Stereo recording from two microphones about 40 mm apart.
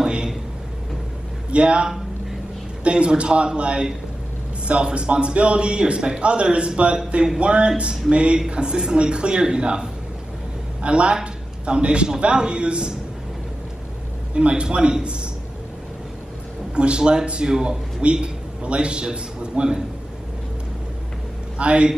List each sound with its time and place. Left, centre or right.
0.0 s a sound: right
1.5 s a man's voice: right
14.3 s a man's voice: right
16.7 s a man's voice: right
21.5 s a man's voice: right